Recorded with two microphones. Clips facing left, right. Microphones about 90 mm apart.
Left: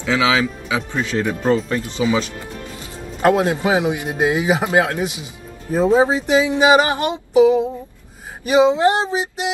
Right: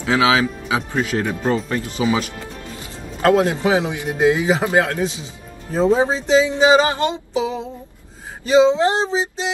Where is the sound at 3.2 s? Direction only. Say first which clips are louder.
Even; 20° left (ahead or behind).